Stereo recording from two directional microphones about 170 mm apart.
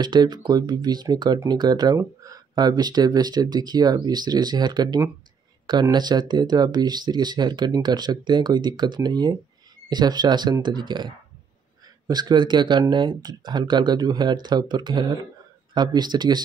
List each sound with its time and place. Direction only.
0.0 s speech: 25° right (ahead or behind)
12.1 s speech: 25° right (ahead or behind)